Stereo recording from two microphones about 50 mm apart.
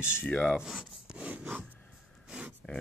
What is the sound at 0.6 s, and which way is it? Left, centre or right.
Speech, centre.